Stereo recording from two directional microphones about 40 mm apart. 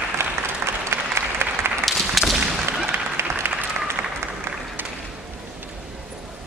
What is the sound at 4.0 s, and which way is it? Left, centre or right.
Applause, right.